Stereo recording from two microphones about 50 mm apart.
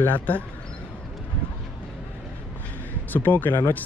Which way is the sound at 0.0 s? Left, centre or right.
Left.